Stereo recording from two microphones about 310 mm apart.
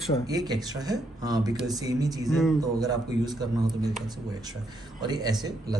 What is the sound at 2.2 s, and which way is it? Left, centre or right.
Speech, centre.